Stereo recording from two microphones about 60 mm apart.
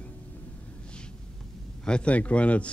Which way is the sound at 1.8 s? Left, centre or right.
Centre.